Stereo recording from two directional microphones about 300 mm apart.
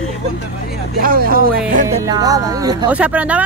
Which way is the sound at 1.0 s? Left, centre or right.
Right.